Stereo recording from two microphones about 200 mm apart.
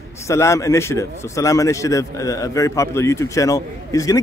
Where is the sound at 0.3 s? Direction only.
15° left (ahead or behind).